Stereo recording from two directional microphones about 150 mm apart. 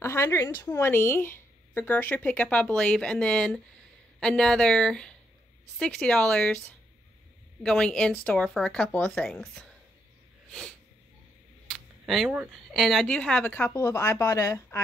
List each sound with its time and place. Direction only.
0.0 s a woman's voice: 20° left (ahead or behind)
7.6 s speech: 5° left (ahead or behind)
11.7 s camera: centre (ahead or behind)
12.7 s a woman's voice: centre (ahead or behind); by 14.8 s 20° left (ahead or behind)